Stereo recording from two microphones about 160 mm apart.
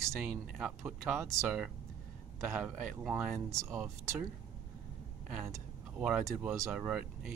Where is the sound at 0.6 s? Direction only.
15° right (ahead or behind).